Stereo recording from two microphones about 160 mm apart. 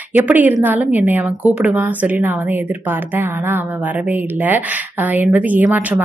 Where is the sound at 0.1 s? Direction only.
10° right (ahead or behind).